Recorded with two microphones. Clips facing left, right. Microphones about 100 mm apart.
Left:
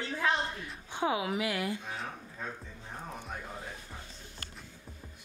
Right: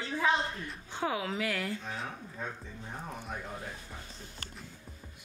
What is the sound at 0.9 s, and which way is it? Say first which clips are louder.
A woman's voice: left 2 dB; 15° left (ahead or behind).